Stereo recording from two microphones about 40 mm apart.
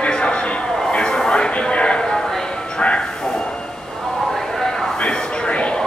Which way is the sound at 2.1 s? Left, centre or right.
Centre.